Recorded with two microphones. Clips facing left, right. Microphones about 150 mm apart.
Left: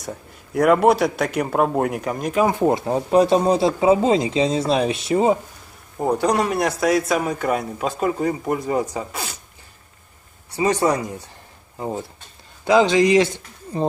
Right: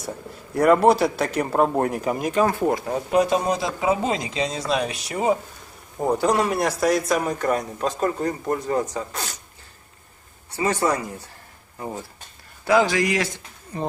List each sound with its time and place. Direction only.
0.6 s a man's voice: centre (ahead or behind)
2.4 s speech: 20° left (ahead or behind)
5.9 s a man's voice: centre (ahead or behind)
10.5 s speech: 15° left (ahead or behind)
12.6 s speech: 20° left (ahead or behind)